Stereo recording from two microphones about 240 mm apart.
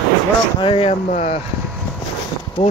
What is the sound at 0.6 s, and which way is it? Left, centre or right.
Speech, left.